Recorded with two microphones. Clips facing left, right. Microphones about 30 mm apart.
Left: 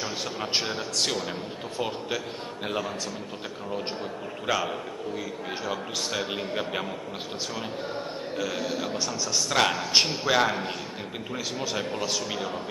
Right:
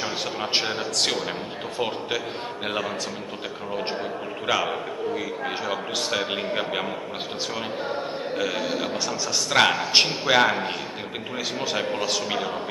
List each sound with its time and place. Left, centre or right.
0.4 s a man's voice: right
4.5 s a man's voice: right
7.9 s a man's voice: right